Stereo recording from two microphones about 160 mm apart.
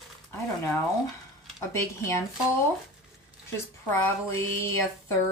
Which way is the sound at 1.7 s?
20° left (ahead or behind).